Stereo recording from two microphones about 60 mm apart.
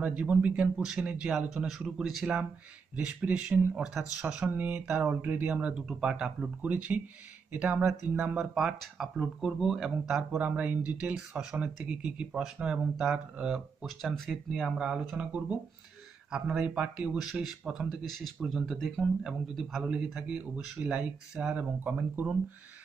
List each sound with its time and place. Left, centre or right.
0.0 s speech: right; by 2.3 s centre
3.0 s speech: right
5.5 s speech: centre
7.5 s speech: right
8.4 s speech: centre
10.4 s speech: right
13.8 s speech: centre
15.1 s speech: right
17.2 s speech: centre
20.2 s speech: right